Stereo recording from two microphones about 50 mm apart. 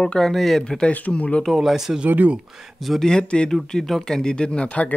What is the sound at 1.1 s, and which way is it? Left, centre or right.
Speech, left.